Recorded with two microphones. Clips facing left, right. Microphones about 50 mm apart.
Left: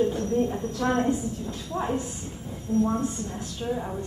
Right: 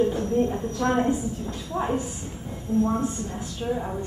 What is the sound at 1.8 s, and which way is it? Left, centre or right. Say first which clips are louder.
Speech: right 2 dB; centre.